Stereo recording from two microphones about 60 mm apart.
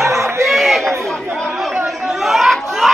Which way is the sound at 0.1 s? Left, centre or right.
Right.